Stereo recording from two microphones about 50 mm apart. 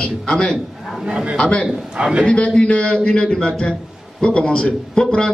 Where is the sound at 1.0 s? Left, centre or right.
Right.